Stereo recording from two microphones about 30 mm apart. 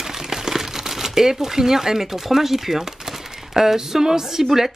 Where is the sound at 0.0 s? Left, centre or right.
Centre.